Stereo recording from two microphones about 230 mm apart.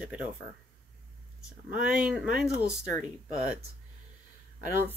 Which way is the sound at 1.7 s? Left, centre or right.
Centre.